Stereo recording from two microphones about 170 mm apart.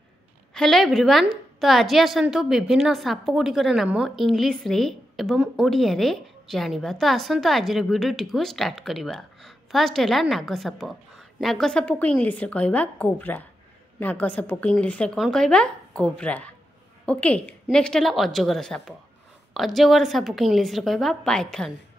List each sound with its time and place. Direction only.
0.6 s a woman's voice: centre (ahead or behind)